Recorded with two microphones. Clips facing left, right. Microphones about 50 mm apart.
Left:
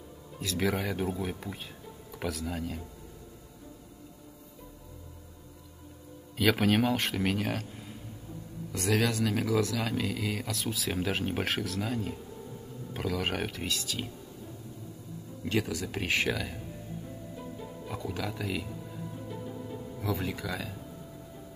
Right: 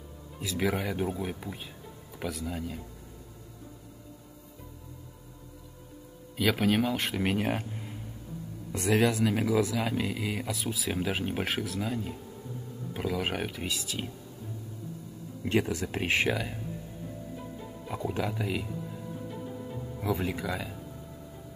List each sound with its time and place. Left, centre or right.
0.4 s speech: centre
6.3 s speech: centre
7.2 s speech: centre
15.4 s speech: right
17.4 s music: centre
18.0 s speech: right
18.7 s music: centre
20.0 s speech: centre